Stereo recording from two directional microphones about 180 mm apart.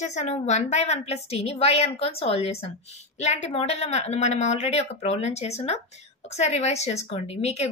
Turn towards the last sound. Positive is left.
turn(degrees=35)  # may be behind; listen again after turning